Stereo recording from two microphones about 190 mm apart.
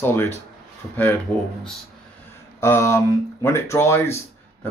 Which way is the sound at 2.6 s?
15° left (ahead or behind).